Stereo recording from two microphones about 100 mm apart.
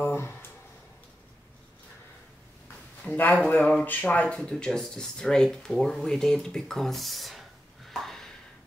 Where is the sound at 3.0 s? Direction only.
15° left (ahead or behind).